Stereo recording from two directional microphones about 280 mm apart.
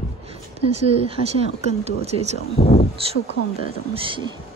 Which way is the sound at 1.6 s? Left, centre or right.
Right.